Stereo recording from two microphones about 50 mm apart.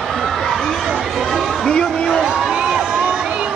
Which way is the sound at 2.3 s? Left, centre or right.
Right.